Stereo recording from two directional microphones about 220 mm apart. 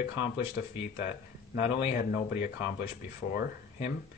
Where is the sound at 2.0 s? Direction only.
45° left (ahead or behind).